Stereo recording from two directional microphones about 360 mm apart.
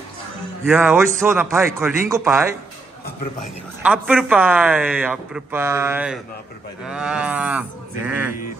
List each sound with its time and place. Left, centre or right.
0.7 s a man's voice: centre
3.8 s a man's voice: centre